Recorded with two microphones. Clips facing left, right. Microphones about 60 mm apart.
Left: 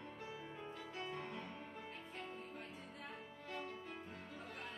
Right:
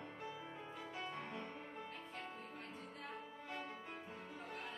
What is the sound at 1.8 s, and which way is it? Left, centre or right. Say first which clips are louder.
Music: even; centre.